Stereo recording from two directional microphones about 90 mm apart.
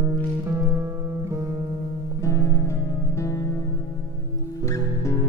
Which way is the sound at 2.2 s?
35° left (ahead or behind).